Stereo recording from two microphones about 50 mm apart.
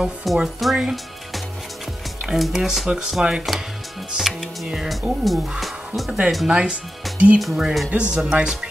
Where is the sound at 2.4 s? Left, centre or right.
Centre.